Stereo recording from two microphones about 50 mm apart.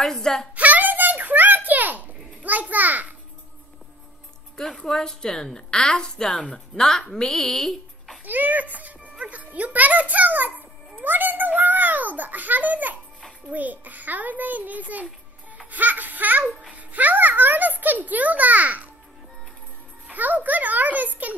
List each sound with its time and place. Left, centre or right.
0.0 s a woman's voice: centre
0.6 s a sound: right
4.6 s a woman's voice: centre
8.3 s a child's voice: right
11.0 s a sound: right
13.5 s a child's voice: right
20.1 s a child's voice: right